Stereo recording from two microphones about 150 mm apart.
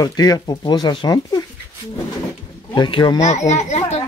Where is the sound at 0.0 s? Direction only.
25° left (ahead or behind).